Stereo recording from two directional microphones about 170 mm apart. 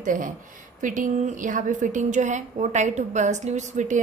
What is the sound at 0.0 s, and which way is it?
A woman's voice, 50° right (ahead or behind).